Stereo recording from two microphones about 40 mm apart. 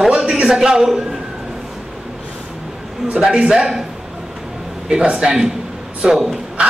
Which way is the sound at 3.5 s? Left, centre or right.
Centre.